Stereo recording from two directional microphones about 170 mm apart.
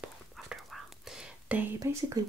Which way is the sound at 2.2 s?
20° right (ahead or behind).